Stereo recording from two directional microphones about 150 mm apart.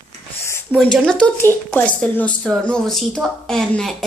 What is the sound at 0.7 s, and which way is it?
Speech, 5° right (ahead or behind).